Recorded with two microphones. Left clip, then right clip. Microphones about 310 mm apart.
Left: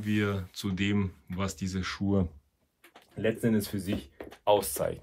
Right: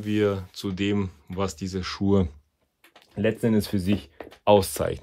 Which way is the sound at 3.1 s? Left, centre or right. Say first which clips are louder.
Right 5 dB; right.